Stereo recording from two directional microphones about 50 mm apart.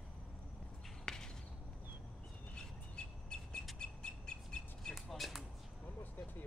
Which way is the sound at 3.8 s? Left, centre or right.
Centre.